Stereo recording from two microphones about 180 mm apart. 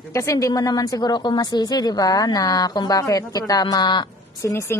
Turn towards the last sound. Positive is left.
turn(degrees=15)  # may be behind; listen again after turning